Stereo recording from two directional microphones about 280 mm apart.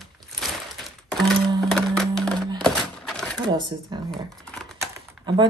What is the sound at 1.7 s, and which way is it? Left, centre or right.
Music, centre.